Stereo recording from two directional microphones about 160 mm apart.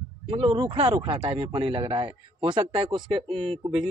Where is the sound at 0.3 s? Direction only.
30° right (ahead or behind).